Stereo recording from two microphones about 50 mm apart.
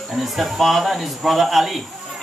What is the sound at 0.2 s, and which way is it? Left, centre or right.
Speech, centre.